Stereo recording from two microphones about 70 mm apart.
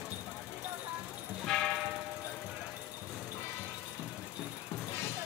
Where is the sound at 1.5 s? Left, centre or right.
Centre.